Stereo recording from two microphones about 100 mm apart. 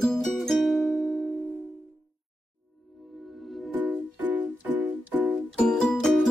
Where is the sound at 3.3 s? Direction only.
Centre (ahead or behind).